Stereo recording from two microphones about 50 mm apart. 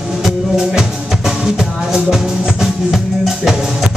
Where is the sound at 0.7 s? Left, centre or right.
Centre.